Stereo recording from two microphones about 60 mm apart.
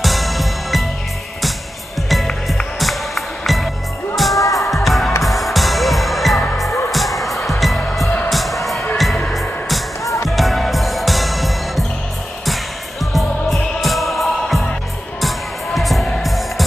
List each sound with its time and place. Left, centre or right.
0.0 s music: centre
2.4 s music: centre
4.4 s music: left
4.6 s music: centre
10.0 s music: left
10.3 s music: centre
13.0 s music: centre